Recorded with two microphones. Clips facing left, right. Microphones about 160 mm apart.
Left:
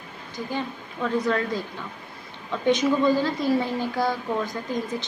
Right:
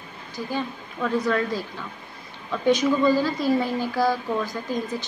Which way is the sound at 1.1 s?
20° left (ahead or behind).